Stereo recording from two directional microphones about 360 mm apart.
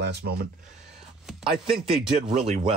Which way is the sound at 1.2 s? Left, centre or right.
Centre.